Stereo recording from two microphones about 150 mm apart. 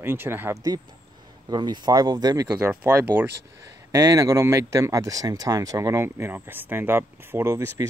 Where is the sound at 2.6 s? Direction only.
10° right (ahead or behind).